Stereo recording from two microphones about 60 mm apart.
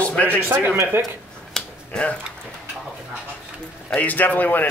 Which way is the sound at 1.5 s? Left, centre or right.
Centre.